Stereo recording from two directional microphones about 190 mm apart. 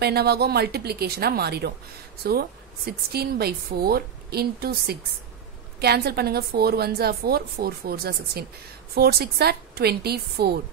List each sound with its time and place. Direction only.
0.0 s a woman's voice: 55° right (ahead or behind)